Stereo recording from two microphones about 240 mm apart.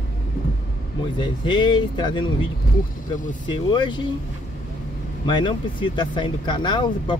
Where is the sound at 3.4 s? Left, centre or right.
Centre.